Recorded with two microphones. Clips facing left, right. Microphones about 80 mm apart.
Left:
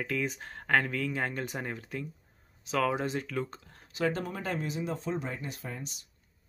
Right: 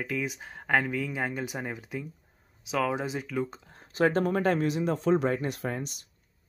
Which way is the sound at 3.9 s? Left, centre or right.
Right.